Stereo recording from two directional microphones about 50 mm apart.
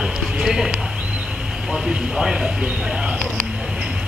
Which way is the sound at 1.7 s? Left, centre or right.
Centre.